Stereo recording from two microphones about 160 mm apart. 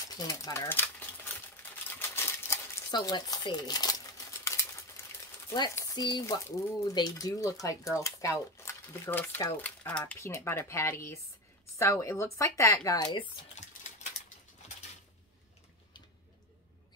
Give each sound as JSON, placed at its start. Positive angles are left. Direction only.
{"t": 0.1, "sound": "speech", "side_deg": 20}
{"t": 2.0, "sound": "typewriter", "side_deg": 15}
{"t": 2.9, "sound": "speech", "side_deg": 25}
{"t": 4.5, "sound": "a sound", "side_deg": 20}
{"t": 5.5, "sound": "speech", "side_deg": 25}